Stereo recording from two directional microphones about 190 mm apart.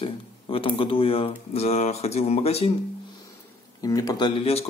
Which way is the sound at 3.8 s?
20° left (ahead or behind).